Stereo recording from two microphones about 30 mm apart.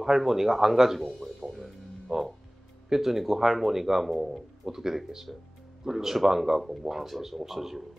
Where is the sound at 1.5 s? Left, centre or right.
Centre.